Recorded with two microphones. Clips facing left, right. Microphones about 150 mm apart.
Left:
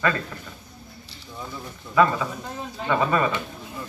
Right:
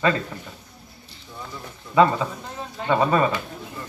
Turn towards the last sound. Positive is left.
turn(degrees=-25)  # may be behind; listen again after turning